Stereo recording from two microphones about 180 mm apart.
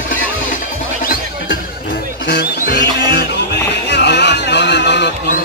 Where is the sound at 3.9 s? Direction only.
70° left (ahead or behind).